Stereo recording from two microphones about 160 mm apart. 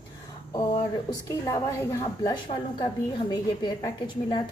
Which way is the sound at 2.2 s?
30° left (ahead or behind).